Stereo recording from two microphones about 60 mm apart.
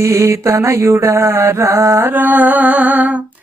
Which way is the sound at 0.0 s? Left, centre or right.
Right.